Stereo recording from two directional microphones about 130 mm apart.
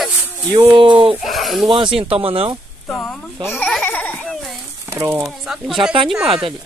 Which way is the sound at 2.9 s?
10° left (ahead or behind).